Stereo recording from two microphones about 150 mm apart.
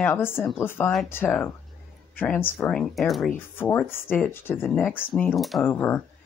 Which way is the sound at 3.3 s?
15° left (ahead or behind).